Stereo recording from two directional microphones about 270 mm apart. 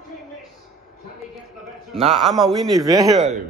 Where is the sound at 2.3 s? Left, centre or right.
Centre.